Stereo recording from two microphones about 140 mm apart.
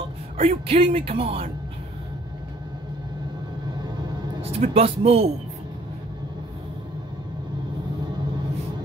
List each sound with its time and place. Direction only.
0.4 s speech: 45° right (ahead or behind)
4.4 s speech: 45° right (ahead or behind)